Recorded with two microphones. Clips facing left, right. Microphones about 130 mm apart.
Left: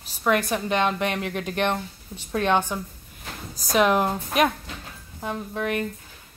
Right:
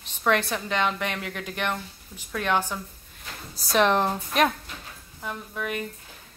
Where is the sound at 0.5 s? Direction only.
20° left (ahead or behind).